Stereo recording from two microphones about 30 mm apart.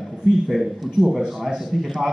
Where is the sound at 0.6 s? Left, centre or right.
Right.